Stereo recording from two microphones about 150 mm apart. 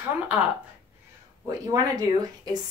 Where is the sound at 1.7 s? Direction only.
25° right (ahead or behind).